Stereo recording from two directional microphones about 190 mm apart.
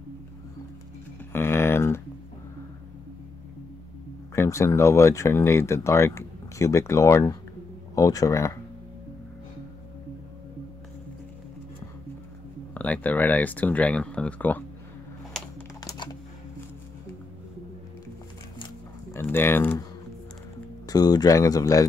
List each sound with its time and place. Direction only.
1.3 s a sound: 10° left (ahead or behind)
4.4 s speech: 15° left (ahead or behind)
12.7 s speech: 10° left (ahead or behind)
15.8 s typing: 20° left (ahead or behind)
19.1 s speech: 10° left (ahead or behind)
20.8 s speech: 20° left (ahead or behind)